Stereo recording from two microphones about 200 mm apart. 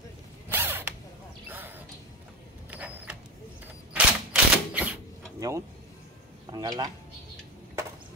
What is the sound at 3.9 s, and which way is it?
Typewriter, 5° right (ahead or behind).